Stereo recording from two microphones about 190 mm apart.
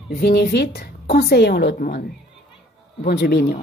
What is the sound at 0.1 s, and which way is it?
A woman's voice, 55° left (ahead or behind).